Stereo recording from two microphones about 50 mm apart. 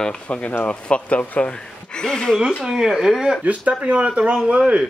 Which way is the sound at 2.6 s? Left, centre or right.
Centre.